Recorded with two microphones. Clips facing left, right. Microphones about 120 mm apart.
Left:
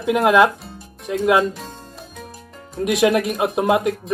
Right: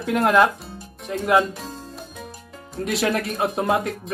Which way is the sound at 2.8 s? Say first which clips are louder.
Left 6 dB; 15° left (ahead or behind).